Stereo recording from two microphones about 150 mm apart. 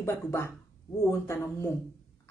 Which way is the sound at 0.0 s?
15° left (ahead or behind).